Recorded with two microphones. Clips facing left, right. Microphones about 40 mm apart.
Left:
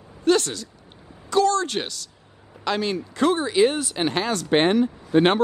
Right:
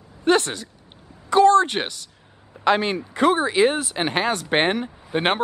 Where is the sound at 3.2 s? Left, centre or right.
Centre.